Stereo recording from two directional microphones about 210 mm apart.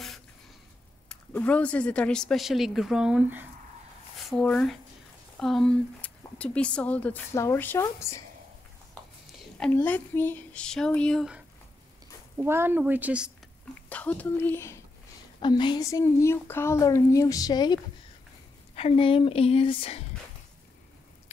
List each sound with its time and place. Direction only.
1.0 s speech: 5° left (ahead or behind)
4.3 s speech: 5° left (ahead or behind)
9.6 s a woman's voice: 10° left (ahead or behind)
13.8 s speech: 5° left (ahead or behind)
18.8 s speech: 25° left (ahead or behind)